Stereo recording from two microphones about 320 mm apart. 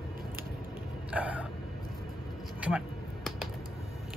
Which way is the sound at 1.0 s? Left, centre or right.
Centre.